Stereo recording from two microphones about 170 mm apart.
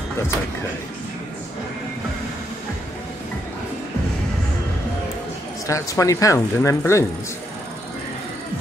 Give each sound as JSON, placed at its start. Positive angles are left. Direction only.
{"t": 5.7, "sound": "speech", "side_deg": 20}